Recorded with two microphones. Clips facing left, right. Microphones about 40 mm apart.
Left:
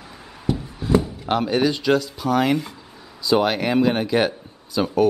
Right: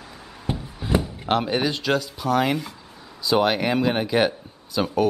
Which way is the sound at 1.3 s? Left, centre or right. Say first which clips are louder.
Left 2 dB; centre.